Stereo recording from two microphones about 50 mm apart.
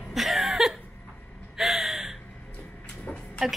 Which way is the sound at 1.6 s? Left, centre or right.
Centre.